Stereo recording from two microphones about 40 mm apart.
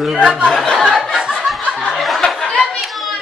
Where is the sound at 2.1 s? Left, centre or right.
Centre.